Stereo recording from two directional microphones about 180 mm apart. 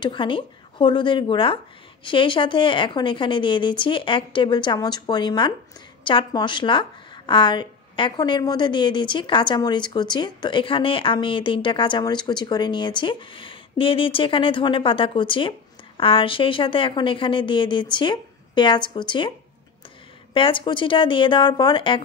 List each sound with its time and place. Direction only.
0.0 s a woman's voice: 25° left (ahead or behind)
20.3 s a woman's voice: 30° left (ahead or behind)